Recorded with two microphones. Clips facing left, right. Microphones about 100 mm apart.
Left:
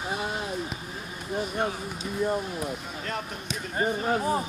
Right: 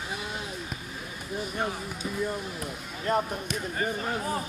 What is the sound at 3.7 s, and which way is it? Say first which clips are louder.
Speech: left 6 dB; 25° left (ahead or behind).